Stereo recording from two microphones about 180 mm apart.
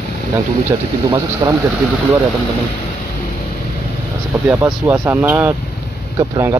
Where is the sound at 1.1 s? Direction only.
20° right (ahead or behind).